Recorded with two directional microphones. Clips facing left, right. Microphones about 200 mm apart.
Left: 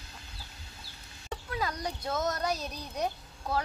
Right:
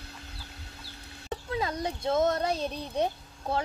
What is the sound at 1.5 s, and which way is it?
Speech, 25° right (ahead or behind).